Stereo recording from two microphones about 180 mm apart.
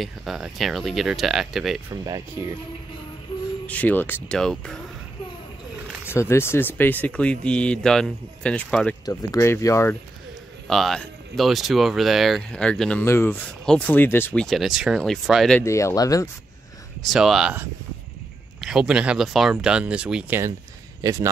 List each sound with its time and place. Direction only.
0.0 s speech: centre (ahead or behind)
1.9 s speech: 20° right (ahead or behind)
3.6 s speech: 10° left (ahead or behind)
6.0 s speech: 15° left (ahead or behind)
9.0 s speech: 20° left (ahead or behind)
10.7 s speech: centre (ahead or behind)
15.6 s speech: 15° left (ahead or behind)
17.0 s a man's voice: centre (ahead or behind); by 21.3 s 20° right (ahead or behind)